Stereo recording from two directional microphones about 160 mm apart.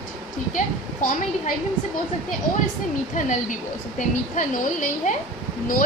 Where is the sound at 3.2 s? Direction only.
50° left (ahead or behind).